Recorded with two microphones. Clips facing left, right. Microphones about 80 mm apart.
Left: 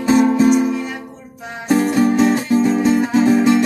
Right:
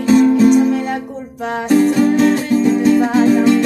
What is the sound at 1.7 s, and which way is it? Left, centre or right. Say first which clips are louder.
Music: right 2 dB; centre.